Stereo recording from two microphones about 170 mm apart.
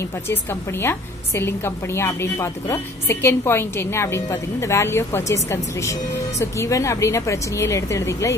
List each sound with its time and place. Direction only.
0.3 s a woman's voice: 15° left (ahead or behind)